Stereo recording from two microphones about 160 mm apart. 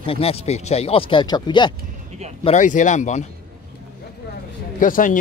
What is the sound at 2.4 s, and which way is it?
Speech, 50° left (ahead or behind).